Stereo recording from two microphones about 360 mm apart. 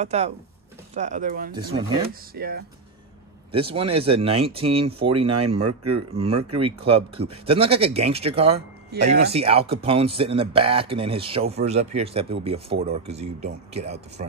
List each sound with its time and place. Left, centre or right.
0.0 s speech: centre
1.5 s speech: centre
2.3 s speech: right
3.5 s speech: centre